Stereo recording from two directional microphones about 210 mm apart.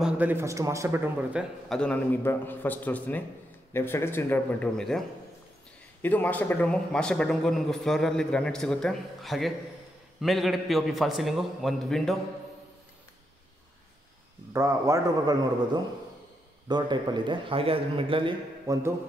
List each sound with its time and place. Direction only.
0.0 s speech: 10° right (ahead or behind)
1.7 s speech: 5° left (ahead or behind)
6.0 s a man's voice: 10° left (ahead or behind)
14.5 s a man's voice: 15° right (ahead or behind)